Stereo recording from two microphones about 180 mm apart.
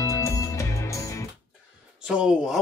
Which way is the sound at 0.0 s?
15° left (ahead or behind).